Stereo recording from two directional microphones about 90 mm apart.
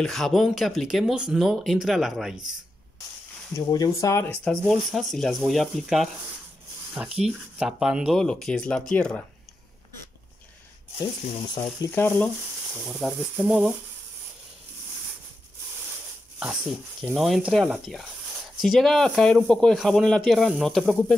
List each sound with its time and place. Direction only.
0.0 s speech: 5° left (ahead or behind)
3.7 s speech: 40° left (ahead or behind)
4.3 s speech: 10° left (ahead or behind); by 8.1 s 10° right (ahead or behind)
8.1 s speech: 5° left (ahead or behind)
11.0 s speech: 65° left (ahead or behind)
13.0 s speech: 10° right (ahead or behind)
16.3 s speech: 10° right (ahead or behind)
18.6 s speech: centre (ahead or behind)